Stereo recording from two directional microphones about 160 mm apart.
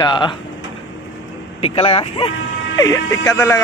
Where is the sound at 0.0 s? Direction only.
30° left (ahead or behind).